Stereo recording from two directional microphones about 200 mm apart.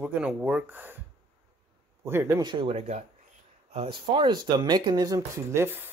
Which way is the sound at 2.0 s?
15° right (ahead or behind).